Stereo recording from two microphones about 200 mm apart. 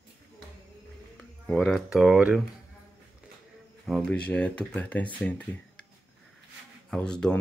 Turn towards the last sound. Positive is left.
turn(degrees=5)  # may be behind; listen again after turning